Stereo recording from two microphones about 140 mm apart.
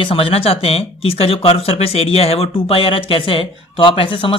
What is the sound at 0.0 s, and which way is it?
Speech, 40° left (ahead or behind).